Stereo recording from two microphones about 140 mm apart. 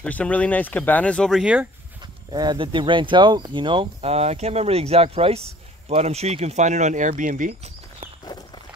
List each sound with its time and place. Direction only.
0.0 s speech: 10° left (ahead or behind)
1.4 s speech: 5° right (ahead or behind)
2.3 s speech: 30° right (ahead or behind); by 7.5 s 75° right (ahead or behind)